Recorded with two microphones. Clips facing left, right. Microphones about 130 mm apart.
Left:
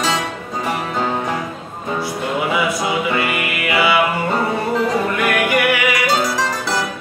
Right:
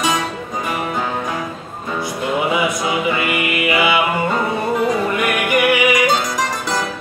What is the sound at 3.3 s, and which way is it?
Music, 20° right (ahead or behind).